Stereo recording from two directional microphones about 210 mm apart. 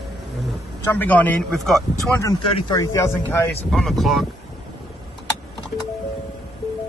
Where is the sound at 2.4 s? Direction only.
25° left (ahead or behind).